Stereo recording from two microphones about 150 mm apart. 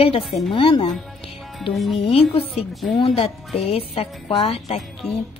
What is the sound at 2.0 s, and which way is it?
Speech, 40° left (ahead or behind).